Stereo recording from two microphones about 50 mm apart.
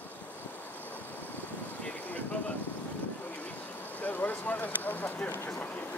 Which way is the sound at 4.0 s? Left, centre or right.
Left.